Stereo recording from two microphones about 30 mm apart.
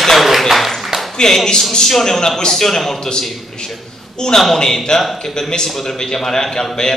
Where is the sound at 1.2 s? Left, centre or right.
Left.